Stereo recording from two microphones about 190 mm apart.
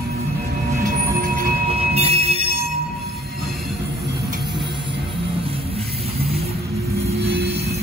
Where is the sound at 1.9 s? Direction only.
35° right (ahead or behind).